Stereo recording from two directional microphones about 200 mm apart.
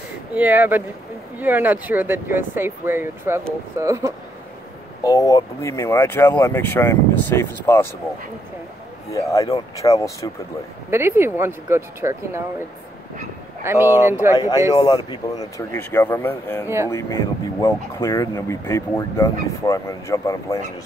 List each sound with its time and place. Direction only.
0.3 s speech: 10° right (ahead or behind)
5.0 s speech: 15° left (ahead or behind)
9.1 s speech: 15° left (ahead or behind)
10.9 s speech: 10° right (ahead or behind)
13.6 s speech: 10° right (ahead or behind)
15.0 s speech: 15° left (ahead or behind)
16.6 s speech: 15° right (ahead or behind)
16.9 s speech: 15° left (ahead or behind)